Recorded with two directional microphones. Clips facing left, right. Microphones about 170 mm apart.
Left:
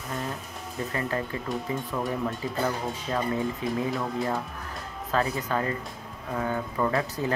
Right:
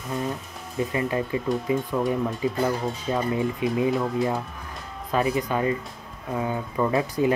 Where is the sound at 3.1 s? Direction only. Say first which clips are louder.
Right 3 dB; 20° right (ahead or behind).